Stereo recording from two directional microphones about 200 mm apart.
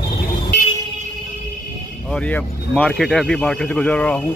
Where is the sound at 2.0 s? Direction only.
5° left (ahead or behind).